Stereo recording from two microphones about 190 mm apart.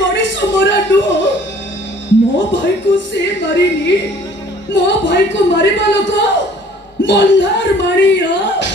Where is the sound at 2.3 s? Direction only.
75° left (ahead or behind).